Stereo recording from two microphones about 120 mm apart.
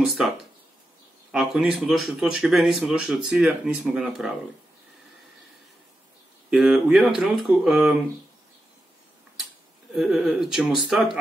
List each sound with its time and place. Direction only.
0.0 s speech: centre (ahead or behind)
1.3 s speech: 5° right (ahead or behind)
6.5 s speech: 5° right (ahead or behind)
9.9 s speech: 5° right (ahead or behind)